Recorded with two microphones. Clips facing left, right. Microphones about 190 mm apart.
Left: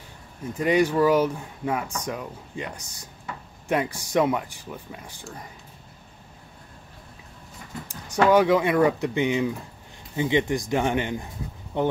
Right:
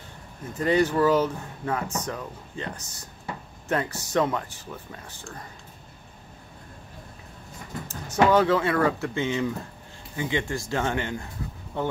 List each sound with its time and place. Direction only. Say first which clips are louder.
0.6 s speech: left 1 dB; 10° left (ahead or behind)
7.9 s speech: left 1 dB; 10° left (ahead or behind)